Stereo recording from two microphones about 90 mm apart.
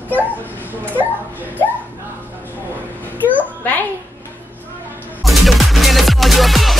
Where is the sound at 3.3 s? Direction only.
20° left (ahead or behind).